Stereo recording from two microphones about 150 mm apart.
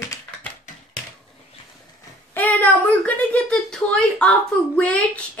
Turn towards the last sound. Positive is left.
turn(degrees=10)  # may be behind; listen again after turning